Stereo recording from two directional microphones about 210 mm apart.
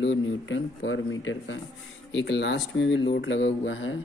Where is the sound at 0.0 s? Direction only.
60° left (ahead or behind).